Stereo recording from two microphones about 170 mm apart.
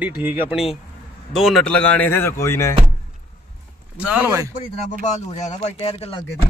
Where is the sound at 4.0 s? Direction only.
10° right (ahead or behind).